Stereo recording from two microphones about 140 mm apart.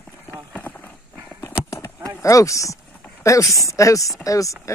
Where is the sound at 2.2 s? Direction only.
25° left (ahead or behind).